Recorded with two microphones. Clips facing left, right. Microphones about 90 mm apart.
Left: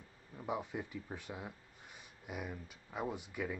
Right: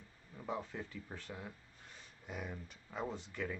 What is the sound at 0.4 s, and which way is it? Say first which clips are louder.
Speech: left 2 dB; 15° left (ahead or behind).